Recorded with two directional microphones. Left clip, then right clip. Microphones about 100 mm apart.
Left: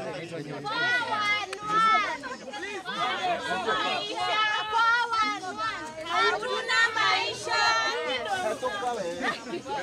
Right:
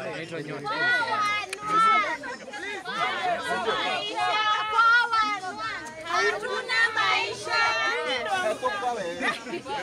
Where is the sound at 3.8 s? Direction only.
5° left (ahead or behind).